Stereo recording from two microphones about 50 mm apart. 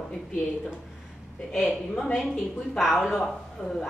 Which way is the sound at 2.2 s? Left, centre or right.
Centre.